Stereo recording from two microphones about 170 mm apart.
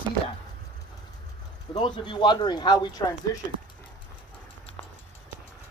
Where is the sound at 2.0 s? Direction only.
30° left (ahead or behind).